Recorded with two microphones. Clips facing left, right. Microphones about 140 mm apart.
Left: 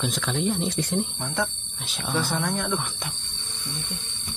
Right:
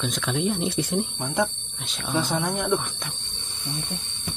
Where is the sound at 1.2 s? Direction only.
15° right (ahead or behind).